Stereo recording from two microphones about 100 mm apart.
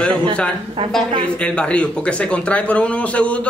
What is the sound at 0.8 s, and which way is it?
Speech, 55° right (ahead or behind).